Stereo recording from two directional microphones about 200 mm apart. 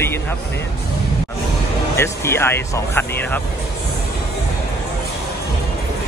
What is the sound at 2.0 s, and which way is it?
Speech, 15° left (ahead or behind).